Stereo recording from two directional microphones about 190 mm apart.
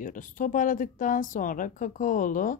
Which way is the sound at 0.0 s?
45° left (ahead or behind).